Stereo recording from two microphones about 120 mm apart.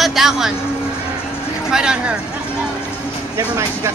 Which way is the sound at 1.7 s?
5° right (ahead or behind).